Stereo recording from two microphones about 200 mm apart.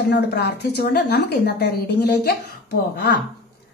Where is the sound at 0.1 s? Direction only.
55° left (ahead or behind).